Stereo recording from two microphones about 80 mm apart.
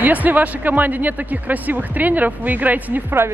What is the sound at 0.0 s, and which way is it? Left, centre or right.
Speech, right.